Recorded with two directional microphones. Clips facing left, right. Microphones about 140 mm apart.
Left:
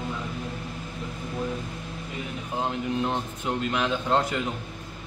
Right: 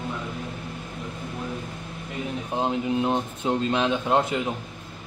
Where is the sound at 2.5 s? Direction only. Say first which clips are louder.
Right 3 dB; 20° right (ahead or behind).